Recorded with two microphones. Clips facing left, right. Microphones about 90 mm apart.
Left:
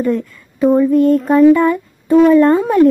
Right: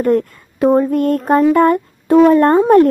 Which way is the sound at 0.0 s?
55° right (ahead or behind).